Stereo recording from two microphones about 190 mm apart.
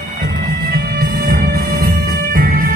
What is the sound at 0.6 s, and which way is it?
Music, 50° right (ahead or behind).